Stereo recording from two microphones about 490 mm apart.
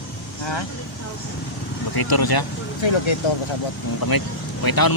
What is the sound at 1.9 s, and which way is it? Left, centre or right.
Speech, left.